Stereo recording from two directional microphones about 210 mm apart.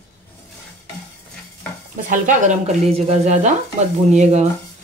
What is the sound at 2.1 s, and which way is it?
Speech, 35° right (ahead or behind).